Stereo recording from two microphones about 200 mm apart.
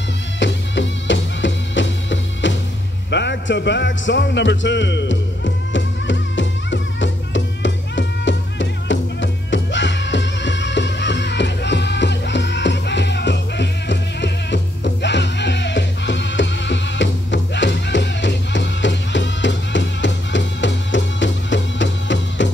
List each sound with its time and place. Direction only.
0.4 s music: 65° left (ahead or behind)